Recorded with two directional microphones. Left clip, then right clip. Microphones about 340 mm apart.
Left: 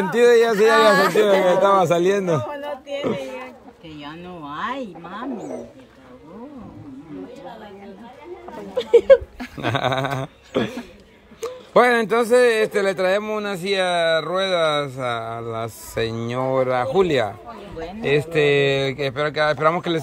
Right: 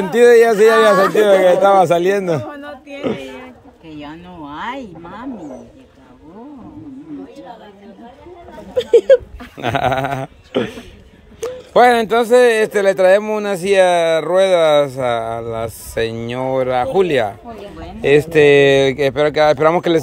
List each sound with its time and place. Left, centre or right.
0.1 s speech: centre
4.1 s speech: centre
8.7 s speech: right
9.6 s speech: centre